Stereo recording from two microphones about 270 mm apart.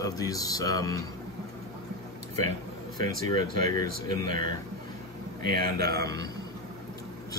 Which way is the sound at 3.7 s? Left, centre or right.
Centre.